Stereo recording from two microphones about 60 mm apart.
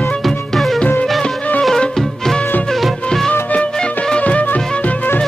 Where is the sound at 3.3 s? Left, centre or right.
Left.